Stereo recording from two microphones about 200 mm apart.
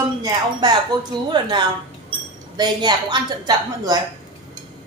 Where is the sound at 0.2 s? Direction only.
20° right (ahead or behind).